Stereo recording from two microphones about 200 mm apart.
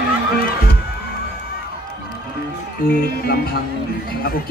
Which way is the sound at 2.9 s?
50° left (ahead or behind).